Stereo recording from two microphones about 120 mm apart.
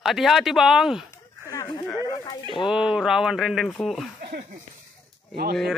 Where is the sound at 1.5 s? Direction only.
35° left (ahead or behind).